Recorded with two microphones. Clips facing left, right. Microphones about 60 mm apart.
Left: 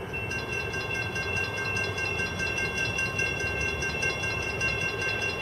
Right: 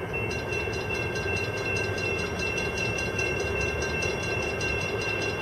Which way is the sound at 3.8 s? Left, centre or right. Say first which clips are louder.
Right 1 dB; left.